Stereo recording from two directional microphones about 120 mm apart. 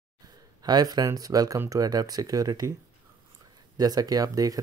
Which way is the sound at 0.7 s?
35° right (ahead or behind).